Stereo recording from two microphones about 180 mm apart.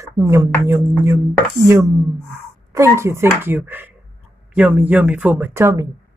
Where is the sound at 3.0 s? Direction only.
15° right (ahead or behind).